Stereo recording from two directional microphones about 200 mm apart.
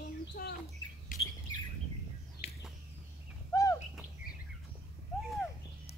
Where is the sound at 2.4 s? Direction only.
30° left (ahead or behind).